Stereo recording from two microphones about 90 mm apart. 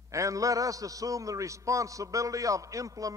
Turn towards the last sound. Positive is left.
turn(degrees=-40)  # may be behind; listen again after turning